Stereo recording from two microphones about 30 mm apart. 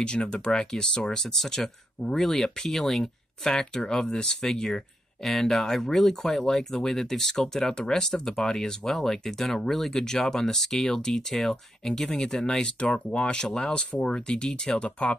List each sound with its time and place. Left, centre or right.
0.0 s speech: left
12.5 s speech: left